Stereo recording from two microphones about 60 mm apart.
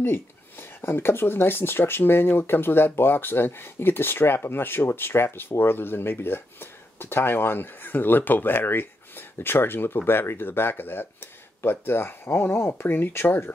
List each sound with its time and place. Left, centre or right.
0.0 s speech: left